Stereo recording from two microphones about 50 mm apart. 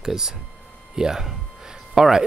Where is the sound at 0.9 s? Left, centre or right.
Centre.